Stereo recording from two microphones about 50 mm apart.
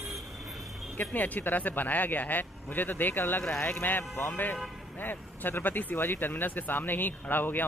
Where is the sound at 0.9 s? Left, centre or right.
Left.